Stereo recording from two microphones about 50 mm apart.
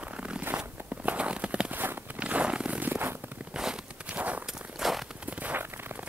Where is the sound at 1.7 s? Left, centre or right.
Right.